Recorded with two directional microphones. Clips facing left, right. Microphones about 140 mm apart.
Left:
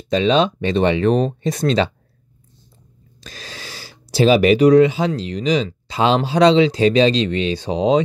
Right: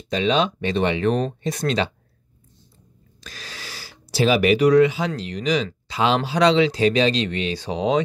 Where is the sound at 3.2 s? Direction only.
25° left (ahead or behind).